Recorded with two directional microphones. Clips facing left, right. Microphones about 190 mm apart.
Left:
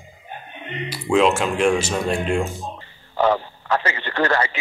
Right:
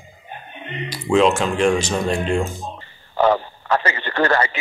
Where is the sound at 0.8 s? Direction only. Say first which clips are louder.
Right 1 dB; 5° left (ahead or behind).